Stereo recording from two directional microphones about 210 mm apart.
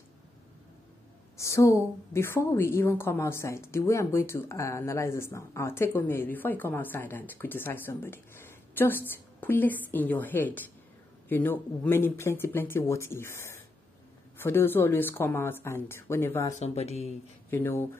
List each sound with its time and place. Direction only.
1.3 s a woman's voice: 15° left (ahead or behind)
16.5 s speech: 30° left (ahead or behind)
17.5 s a woman's voice: 10° left (ahead or behind)